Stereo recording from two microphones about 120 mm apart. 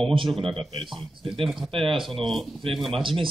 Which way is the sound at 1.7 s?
45° right (ahead or behind).